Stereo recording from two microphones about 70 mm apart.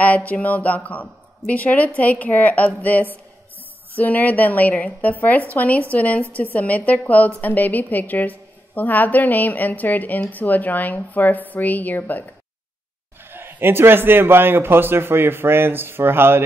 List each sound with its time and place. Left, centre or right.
0.0 s a woman's voice: left
13.2 s a man's voice: right